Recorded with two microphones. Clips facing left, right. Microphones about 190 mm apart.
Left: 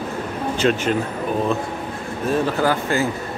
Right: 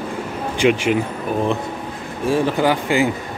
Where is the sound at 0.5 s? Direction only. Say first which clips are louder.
Right 3 dB; 15° right (ahead or behind).